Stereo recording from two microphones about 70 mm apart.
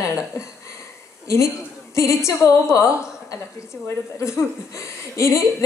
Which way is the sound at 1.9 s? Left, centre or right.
Left.